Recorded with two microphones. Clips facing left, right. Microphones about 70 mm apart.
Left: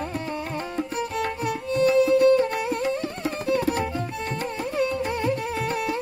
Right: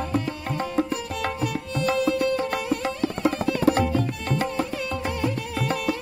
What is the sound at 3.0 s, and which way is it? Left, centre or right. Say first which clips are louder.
Music: right 5 dB; right.